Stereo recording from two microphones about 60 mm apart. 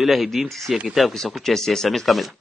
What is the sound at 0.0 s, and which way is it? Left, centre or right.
A man's voice, centre.